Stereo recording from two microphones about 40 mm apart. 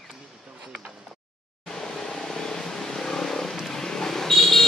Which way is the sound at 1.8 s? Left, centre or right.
Centre.